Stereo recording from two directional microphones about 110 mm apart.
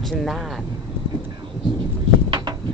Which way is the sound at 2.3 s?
40° right (ahead or behind).